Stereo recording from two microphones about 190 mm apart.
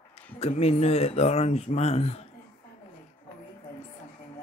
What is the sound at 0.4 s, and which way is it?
Speech, 35° left (ahead or behind).